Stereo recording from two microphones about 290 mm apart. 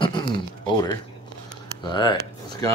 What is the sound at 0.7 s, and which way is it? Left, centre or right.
Speech, centre.